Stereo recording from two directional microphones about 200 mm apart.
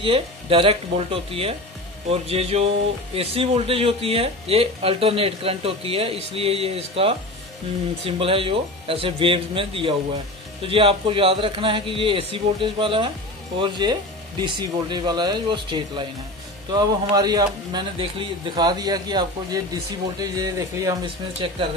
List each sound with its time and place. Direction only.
0.0 s speech: 25° right (ahead or behind)